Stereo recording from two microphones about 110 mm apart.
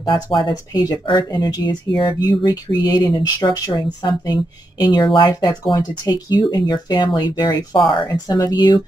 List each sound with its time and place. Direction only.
0.0 s speech: 45° left (ahead or behind)